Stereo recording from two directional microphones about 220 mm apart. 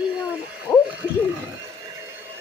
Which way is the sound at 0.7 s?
15° left (ahead or behind).